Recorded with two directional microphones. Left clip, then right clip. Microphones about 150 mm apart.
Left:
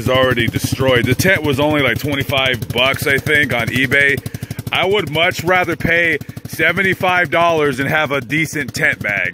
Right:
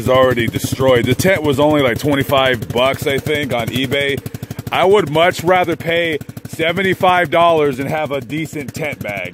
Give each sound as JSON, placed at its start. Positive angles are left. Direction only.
{"t": 0.0, "sound": "speech", "side_deg": -20}
{"t": 2.0, "sound": "speech", "side_deg": -40}
{"t": 3.3, "sound": "speech", "side_deg": -10}
{"t": 4.6, "sound": "speech", "side_deg": -35}
{"t": 5.5, "sound": "speech", "side_deg": -20}
{"t": 7.7, "sound": "speech", "side_deg": -5}